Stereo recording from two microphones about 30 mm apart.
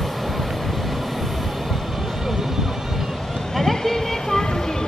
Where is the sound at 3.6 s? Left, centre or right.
Centre.